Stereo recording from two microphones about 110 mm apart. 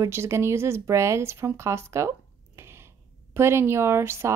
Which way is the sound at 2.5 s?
25° right (ahead or behind).